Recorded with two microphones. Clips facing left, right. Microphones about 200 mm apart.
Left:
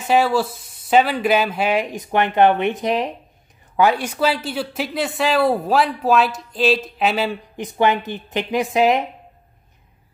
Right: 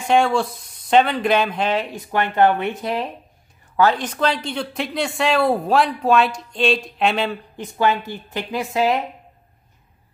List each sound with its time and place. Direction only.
0.0 s a woman's voice: 5° left (ahead or behind)
7.5 s speech: 15° left (ahead or behind)